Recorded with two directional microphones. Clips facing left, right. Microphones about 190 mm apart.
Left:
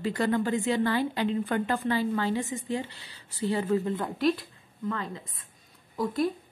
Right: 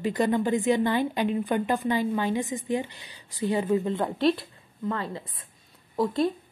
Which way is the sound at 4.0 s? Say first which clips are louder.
Right 3 dB; 30° right (ahead or behind).